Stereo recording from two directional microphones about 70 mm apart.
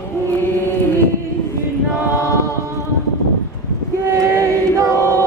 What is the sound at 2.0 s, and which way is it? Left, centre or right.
A capella, left.